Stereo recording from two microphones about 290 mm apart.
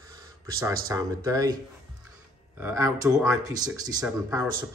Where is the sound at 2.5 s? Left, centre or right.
Centre.